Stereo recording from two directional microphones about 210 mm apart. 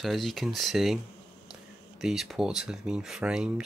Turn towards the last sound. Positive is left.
turn(degrees=-5)  # may be behind; listen again after turning